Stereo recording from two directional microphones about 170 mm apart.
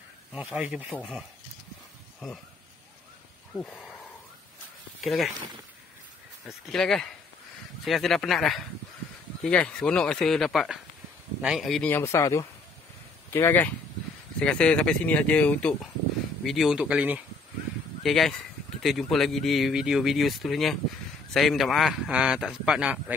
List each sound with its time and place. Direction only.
0.3 s speech: 5° right (ahead or behind)
3.5 s speech: 5° left (ahead or behind)
5.0 s speech: centre (ahead or behind)
6.4 s speech: 5° left (ahead or behind)
11.9 s speech: 15° left (ahead or behind); by 23.1 s 5° right (ahead or behind)